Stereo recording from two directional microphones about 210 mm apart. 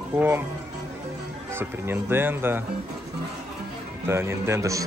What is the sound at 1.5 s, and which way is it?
Speech, 10° right (ahead or behind).